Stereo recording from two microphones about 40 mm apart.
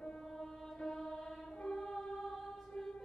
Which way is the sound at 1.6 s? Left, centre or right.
Left.